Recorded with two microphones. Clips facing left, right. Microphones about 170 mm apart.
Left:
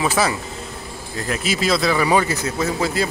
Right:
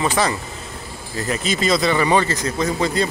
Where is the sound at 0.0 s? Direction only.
5° left (ahead or behind).